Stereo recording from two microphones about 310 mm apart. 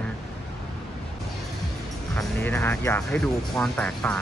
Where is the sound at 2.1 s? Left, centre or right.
Centre.